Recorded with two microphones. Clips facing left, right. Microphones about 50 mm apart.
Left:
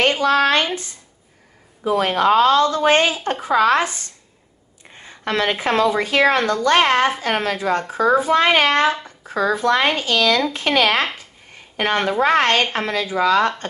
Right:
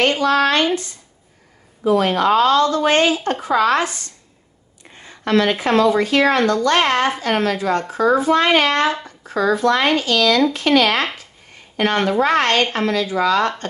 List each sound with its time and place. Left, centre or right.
0.0 s speech: left
1.9 s a woman's voice: left